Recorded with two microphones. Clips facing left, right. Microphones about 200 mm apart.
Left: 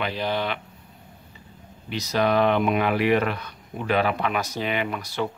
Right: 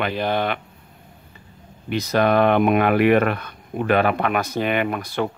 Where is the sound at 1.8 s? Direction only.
55° right (ahead or behind).